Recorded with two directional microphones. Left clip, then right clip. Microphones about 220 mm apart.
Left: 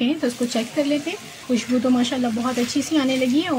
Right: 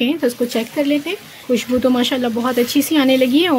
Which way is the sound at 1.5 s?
40° right (ahead or behind).